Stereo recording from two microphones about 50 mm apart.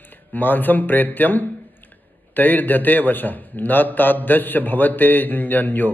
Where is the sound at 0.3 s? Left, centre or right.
Left.